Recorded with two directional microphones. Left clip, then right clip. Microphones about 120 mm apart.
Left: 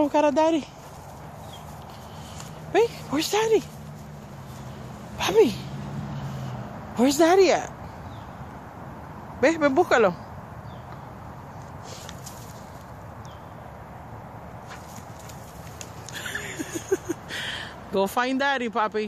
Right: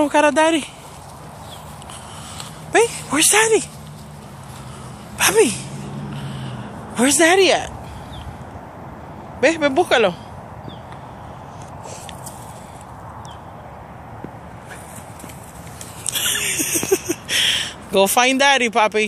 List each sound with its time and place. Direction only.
0.0 s speech: centre (ahead or behind)
2.7 s speech: centre (ahead or behind)
5.1 s speech: 10° left (ahead or behind)
7.0 s a woman's voice: 20° left (ahead or behind)
9.4 s a woman's voice: 30° left (ahead or behind)
16.1 s a sound: centre (ahead or behind)